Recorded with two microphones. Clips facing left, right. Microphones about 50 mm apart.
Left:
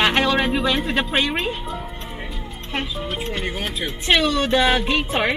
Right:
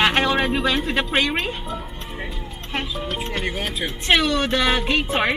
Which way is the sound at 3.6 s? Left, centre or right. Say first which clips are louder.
Even; right.